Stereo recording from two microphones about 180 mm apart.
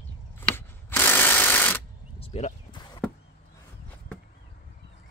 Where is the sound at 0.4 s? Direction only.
10° left (ahead or behind).